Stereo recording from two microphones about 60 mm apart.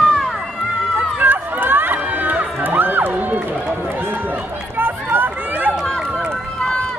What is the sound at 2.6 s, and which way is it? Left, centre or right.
Crowd, right.